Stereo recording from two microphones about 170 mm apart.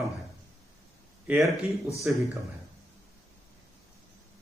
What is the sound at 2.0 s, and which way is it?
Speech, centre (ahead or behind).